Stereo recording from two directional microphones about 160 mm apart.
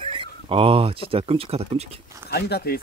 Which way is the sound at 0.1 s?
35° right (ahead or behind).